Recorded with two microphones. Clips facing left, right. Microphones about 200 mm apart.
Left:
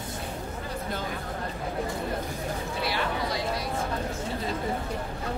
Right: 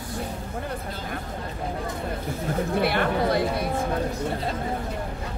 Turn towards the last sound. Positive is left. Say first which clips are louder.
# right 7 dB
turn(degrees=-55)  # may be behind; listen again after turning